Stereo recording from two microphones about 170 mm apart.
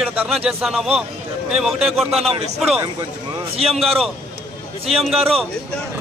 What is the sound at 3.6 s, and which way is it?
A man's voice, centre (ahead or behind).